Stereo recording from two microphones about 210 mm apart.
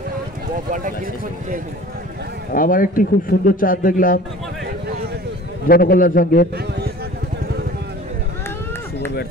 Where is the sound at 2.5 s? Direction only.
40° left (ahead or behind).